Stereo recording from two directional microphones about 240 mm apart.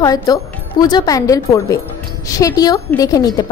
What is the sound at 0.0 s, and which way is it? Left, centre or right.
A woman's voice, centre.